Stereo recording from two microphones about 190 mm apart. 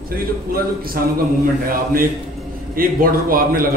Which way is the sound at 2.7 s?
50° right (ahead or behind).